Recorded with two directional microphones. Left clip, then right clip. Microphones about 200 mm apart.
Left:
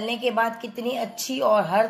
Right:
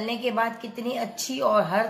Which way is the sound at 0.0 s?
25° left (ahead or behind).